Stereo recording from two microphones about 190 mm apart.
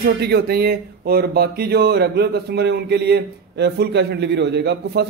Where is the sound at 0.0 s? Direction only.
60° right (ahead or behind).